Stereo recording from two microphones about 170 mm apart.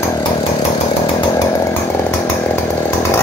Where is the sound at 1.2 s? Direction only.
20° left (ahead or behind).